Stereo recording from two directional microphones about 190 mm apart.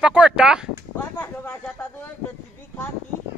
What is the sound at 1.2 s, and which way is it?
Speech, 10° left (ahead or behind).